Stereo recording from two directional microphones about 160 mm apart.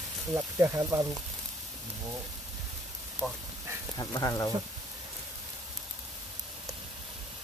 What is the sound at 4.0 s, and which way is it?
Speech, 25° left (ahead or behind).